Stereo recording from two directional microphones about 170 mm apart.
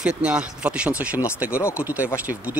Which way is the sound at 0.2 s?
5° right (ahead or behind).